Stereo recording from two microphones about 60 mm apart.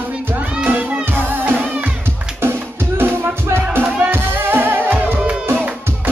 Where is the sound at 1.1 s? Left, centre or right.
Right.